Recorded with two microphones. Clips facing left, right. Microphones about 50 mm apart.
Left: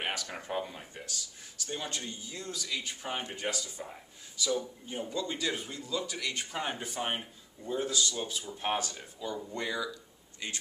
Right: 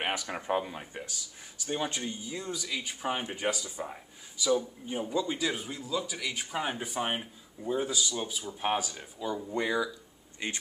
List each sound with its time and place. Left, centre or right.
0.0 s speech: centre